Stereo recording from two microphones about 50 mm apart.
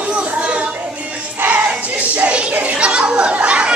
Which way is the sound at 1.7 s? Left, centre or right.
Right.